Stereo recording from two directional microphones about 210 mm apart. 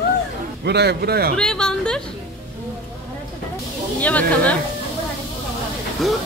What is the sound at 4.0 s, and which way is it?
Speech, 5° left (ahead or behind).